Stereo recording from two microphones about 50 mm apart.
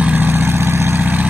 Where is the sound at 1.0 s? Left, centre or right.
Right.